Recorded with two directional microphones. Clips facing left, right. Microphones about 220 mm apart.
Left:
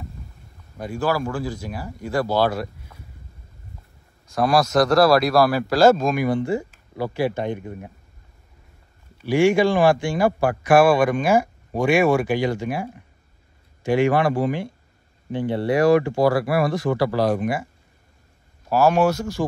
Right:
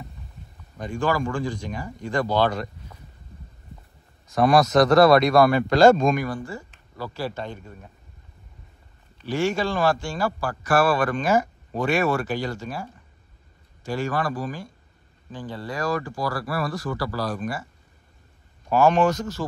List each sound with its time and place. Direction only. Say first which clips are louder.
0.7 s a man's voice: left 1 dB; 5° left (ahead or behind)
4.3 s speech: right 1 dB; centre (ahead or behind)
6.2 s a man's voice: left 9 dB; 20° left (ahead or behind)
9.2 s a man's voice: left 7 dB; 15° left (ahead or behind)
13.8 s speech: left 8 dB; 20° left (ahead or behind)
14.4 s speech: left 8 dB; 65° left (ahead or behind)
16.3 s speech: left 8 dB; 25° left (ahead or behind)
18.7 s a man's voice: left 1 dB; 5° left (ahead or behind)